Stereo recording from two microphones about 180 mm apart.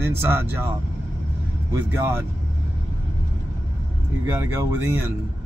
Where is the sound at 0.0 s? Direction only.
15° right (ahead or behind).